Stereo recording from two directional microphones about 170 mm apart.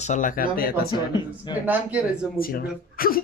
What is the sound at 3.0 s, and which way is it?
Speech, 60° left (ahead or behind).